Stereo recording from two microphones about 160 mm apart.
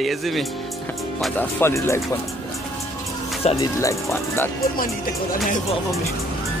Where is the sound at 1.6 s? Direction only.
15° left (ahead or behind).